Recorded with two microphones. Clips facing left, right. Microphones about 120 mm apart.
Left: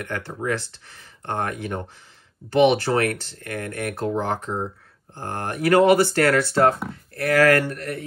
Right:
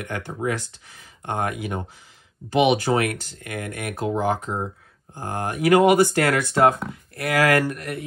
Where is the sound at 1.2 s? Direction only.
10° right (ahead or behind).